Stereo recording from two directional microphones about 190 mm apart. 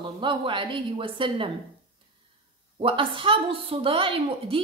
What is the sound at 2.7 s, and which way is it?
A woman's voice, 30° right (ahead or behind).